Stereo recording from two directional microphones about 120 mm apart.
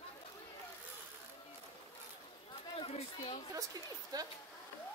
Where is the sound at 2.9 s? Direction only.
60° left (ahead or behind).